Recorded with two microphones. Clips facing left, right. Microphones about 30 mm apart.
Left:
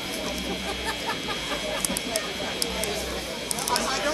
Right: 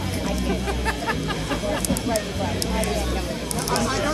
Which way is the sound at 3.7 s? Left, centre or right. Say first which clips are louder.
Right 3 dB; centre.